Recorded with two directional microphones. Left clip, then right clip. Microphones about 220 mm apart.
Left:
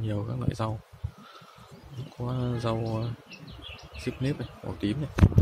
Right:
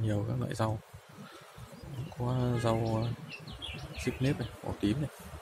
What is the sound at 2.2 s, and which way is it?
Speech, centre (ahead or behind).